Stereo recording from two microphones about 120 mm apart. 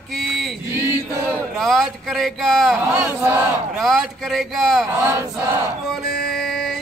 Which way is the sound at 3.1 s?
15° right (ahead or behind).